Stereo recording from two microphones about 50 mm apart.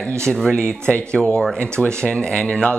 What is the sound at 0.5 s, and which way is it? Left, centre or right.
Speech, centre.